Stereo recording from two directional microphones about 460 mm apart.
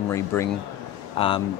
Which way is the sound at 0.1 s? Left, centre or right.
Centre.